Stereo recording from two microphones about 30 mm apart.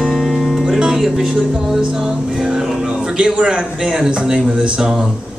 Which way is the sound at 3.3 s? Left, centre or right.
Right.